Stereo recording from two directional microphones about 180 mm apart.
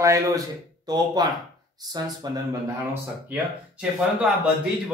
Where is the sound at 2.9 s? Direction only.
5° right (ahead or behind).